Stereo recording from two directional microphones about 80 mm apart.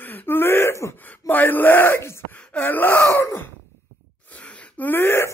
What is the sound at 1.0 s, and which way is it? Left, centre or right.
Wail, left.